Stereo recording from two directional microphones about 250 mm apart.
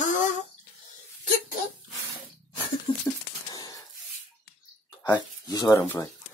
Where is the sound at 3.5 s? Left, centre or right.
Centre.